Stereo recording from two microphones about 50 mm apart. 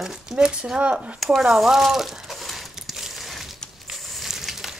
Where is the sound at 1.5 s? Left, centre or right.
Centre.